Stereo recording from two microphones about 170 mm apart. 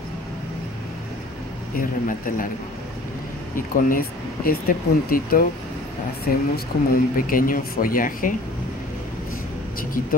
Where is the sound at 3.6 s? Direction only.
55° left (ahead or behind).